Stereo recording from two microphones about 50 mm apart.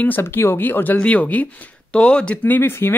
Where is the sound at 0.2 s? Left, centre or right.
Left.